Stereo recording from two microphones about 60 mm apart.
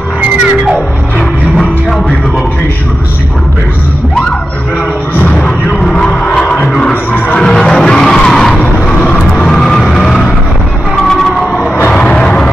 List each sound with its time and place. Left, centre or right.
1.6 s music: centre
5.3 s a sound: left
6.8 s music: left
7.3 s skidding: centre
8.7 s vehicle: centre
11.0 s a sound: centre